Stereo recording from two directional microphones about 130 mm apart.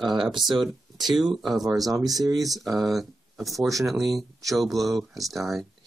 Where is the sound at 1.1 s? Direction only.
Centre (ahead or behind).